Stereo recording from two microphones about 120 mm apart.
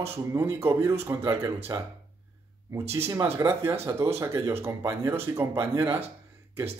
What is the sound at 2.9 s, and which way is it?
Speech, 25° right (ahead or behind).